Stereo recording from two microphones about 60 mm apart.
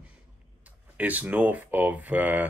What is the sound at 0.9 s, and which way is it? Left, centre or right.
Speech, right.